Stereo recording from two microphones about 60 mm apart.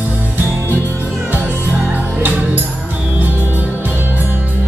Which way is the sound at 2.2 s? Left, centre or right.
Right.